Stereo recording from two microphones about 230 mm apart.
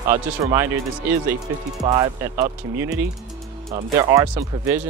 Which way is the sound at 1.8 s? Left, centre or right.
Centre.